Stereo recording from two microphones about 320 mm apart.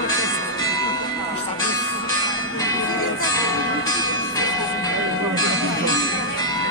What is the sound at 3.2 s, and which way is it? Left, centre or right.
Bell, centre.